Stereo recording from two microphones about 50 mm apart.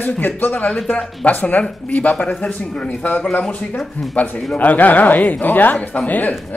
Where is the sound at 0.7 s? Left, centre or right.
Centre.